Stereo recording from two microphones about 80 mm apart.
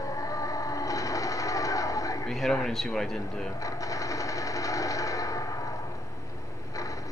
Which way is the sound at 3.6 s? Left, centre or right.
Left.